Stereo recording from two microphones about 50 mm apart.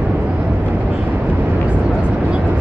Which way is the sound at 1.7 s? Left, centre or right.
Centre.